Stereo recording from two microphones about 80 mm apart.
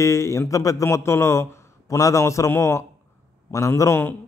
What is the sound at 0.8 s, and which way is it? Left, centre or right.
A man's voice, left.